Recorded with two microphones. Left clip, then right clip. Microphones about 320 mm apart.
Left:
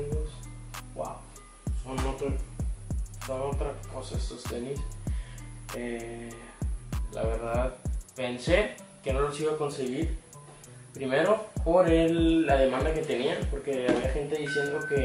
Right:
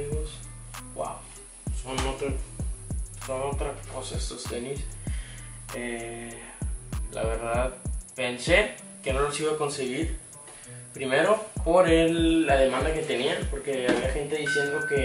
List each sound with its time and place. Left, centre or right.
1.6 s music: centre
11.0 s speech: centre